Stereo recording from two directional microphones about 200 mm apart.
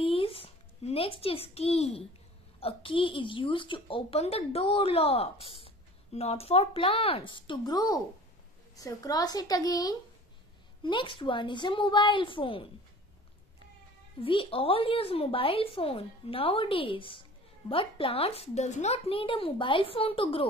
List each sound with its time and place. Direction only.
0.0 s a sound: 30° left (ahead or behind)
2.6 s a woman's voice: 25° left (ahead or behind)
14.2 s a woman's voice: 25° left (ahead or behind)